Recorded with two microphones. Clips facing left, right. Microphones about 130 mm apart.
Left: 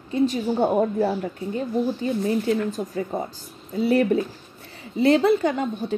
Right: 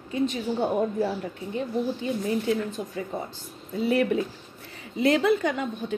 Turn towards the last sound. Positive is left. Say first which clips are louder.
# left 4 dB
turn(degrees=35)  # may be behind; listen again after turning